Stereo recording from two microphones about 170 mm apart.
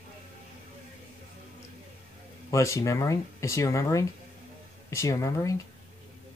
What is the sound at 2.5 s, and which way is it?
Speech, 15° left (ahead or behind).